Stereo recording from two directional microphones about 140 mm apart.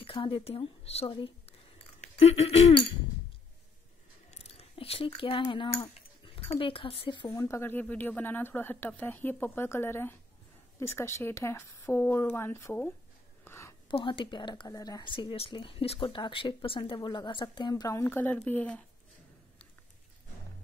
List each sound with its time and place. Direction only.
0.0 s speech: 40° left (ahead or behind)
2.0 s a sound: 50° left (ahead or behind)
4.3 s chewing: 45° left (ahead or behind)
6.2 s speech: 40° left (ahead or behind); by 7.8 s 20° left (ahead or behind)
7.8 s speech: 10° left (ahead or behind)
13.4 s a sound: 20° left (ahead or behind)
13.8 s speech: 35° left (ahead or behind)
18.0 s speech: 15° left (ahead or behind)